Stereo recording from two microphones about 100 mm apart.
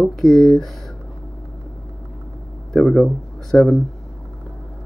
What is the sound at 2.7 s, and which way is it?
Speech, centre (ahead or behind).